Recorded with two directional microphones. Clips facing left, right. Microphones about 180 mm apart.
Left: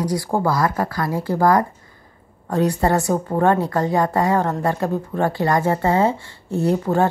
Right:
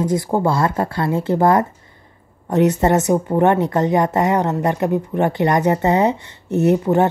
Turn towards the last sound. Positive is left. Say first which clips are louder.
# right 4 dB
turn(degrees=-20)  # may be behind; listen again after turning